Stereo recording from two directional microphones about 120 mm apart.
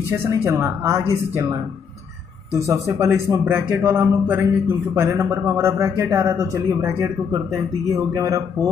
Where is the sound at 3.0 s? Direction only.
20° right (ahead or behind).